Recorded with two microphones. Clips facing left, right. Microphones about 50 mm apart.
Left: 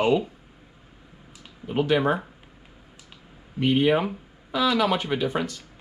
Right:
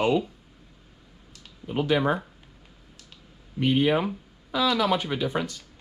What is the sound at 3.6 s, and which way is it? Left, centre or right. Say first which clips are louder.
Speech: left 2 dB; left.